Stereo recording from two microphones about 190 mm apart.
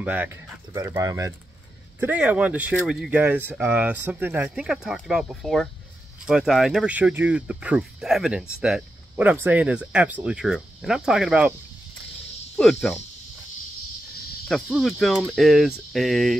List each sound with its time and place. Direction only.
0.0 s speech: 10° right (ahead or behind)
0.7 s speech: 20° right (ahead or behind); by 11.5 s 5° right (ahead or behind)
12.5 s speech: 5° left (ahead or behind)
14.5 s speech: centre (ahead or behind)